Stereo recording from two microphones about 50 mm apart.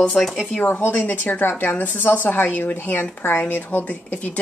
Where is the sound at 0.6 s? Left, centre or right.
Left.